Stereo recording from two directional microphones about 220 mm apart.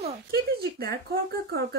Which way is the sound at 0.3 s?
45° right (ahead or behind).